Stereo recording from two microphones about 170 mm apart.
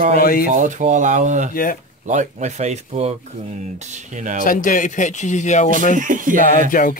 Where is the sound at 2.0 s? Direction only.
45° right (ahead or behind).